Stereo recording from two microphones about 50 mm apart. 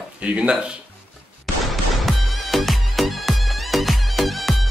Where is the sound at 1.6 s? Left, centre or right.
Centre.